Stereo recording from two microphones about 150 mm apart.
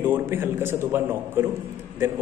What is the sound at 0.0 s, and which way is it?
A man's voice, 15° right (ahead or behind).